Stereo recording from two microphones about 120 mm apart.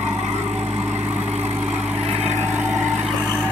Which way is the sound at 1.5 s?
15° right (ahead or behind).